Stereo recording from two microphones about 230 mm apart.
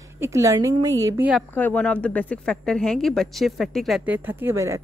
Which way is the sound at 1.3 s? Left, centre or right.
Centre.